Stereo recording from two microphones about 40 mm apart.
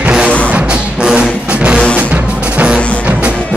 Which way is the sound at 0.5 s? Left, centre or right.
Right.